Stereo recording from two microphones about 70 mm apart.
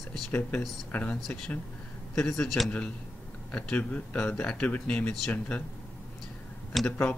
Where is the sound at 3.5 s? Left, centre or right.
Centre.